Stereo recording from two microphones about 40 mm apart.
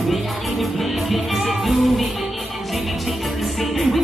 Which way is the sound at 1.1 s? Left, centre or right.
Centre.